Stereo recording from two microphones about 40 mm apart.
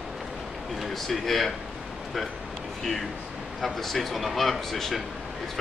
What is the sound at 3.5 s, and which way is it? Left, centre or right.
Speech, centre.